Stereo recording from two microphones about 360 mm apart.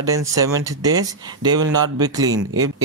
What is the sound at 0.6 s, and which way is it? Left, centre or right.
Speech, centre.